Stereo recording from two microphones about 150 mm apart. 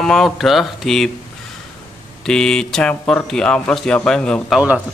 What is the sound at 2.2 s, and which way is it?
Speech, 5° left (ahead or behind).